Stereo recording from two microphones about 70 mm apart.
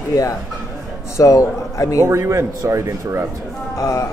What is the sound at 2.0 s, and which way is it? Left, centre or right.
Speech, right.